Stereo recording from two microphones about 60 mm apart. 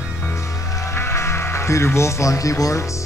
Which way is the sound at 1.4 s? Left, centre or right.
Left.